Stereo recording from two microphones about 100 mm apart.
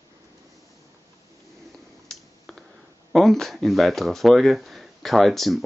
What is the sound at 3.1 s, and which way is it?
Speech, centre (ahead or behind).